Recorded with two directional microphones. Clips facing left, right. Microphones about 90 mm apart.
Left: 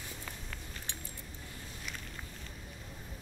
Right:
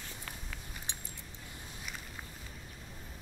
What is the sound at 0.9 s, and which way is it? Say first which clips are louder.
Keys jangling: even; 20° right (ahead or behind).